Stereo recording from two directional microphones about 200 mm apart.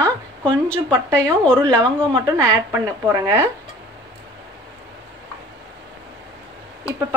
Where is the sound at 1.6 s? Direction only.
20° right (ahead or behind).